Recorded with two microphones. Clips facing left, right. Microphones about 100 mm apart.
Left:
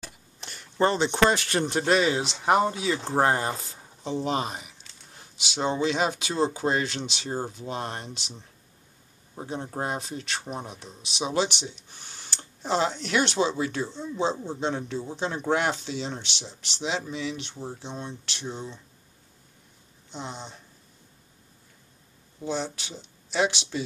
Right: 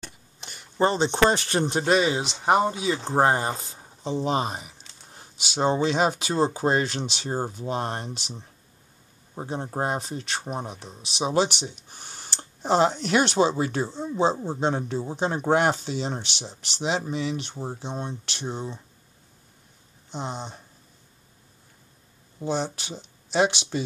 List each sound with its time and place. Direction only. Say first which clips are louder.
0.0 s a sound: even; centre (ahead or behind)
0.7 s speech: right 1 dB; 20° right (ahead or behind)
1.9 s speech: even; 10° right (ahead or behind)
4.0 s speech: right 2 dB; 30° right (ahead or behind)
9.8 s speech: right 4 dB; 40° right (ahead or behind)
20.1 s speech: right 4 dB; 50° right (ahead or behind)
22.5 s speech: right 3 dB; 50° right (ahead or behind)